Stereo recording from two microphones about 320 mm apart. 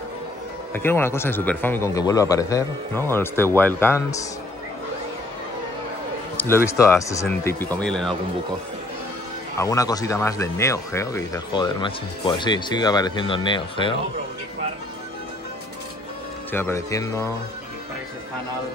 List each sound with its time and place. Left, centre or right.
0.7 s speech: centre
6.3 s speech: centre
9.6 s speech: centre
16.5 s speech: centre